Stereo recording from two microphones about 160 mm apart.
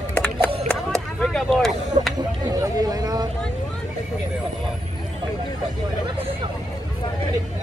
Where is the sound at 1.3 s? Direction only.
Centre (ahead or behind).